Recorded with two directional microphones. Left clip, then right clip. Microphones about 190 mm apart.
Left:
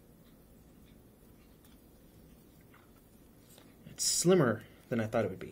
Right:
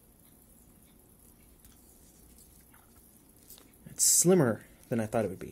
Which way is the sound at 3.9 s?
25° right (ahead or behind).